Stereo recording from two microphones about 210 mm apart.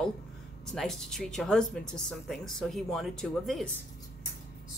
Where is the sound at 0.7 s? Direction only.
Centre (ahead or behind).